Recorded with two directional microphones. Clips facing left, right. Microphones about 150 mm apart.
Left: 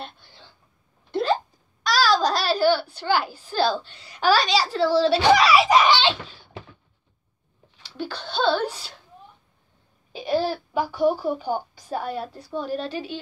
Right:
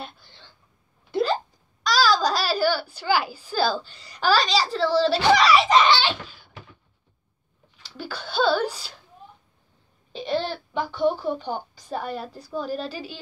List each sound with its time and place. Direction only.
1.8 s a child's voice: centre (ahead or behind)
5.9 s a sound: 25° left (ahead or behind)
7.8 s a woman's voice: 5° right (ahead or behind)
10.1 s a woman's voice: 5° left (ahead or behind)